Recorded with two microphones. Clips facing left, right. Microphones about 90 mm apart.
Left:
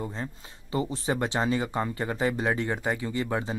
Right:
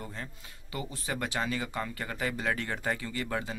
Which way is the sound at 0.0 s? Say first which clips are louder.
Left 7 dB; 25° left (ahead or behind).